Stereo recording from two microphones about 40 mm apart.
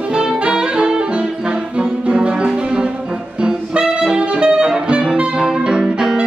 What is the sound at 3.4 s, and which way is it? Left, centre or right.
Saxophone, right.